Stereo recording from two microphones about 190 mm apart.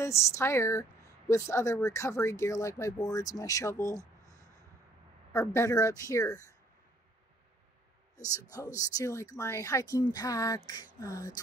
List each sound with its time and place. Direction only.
0.0 s a woman's voice: 15° left (ahead or behind)
4.0 s a sound: 40° left (ahead or behind)
5.3 s a woman's voice: 15° left (ahead or behind)
8.2 s a woman's voice: 20° left (ahead or behind)